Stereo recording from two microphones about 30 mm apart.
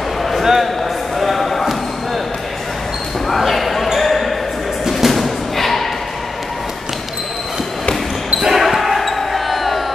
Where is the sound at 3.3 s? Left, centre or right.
Centre.